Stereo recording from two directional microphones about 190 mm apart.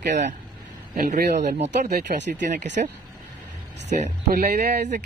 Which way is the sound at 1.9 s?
60° right (ahead or behind).